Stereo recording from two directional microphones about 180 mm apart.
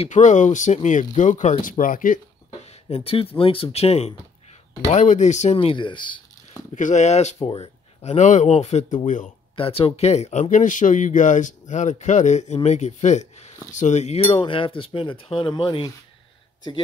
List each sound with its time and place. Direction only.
0.0 s speech: 40° left (ahead or behind)
2.6 s speech: 35° left (ahead or behind)
6.7 s speech: 45° left (ahead or behind)
9.6 s speech: 30° left (ahead or behind)